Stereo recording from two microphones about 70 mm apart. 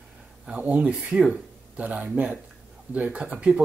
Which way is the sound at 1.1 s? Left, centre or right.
Centre.